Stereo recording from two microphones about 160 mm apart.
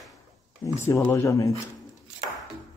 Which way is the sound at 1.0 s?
15° left (ahead or behind).